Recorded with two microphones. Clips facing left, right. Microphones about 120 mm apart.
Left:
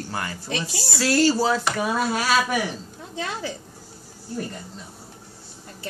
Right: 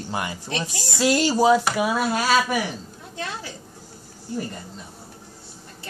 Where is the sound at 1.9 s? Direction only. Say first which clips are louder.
Even; 5° right (ahead or behind).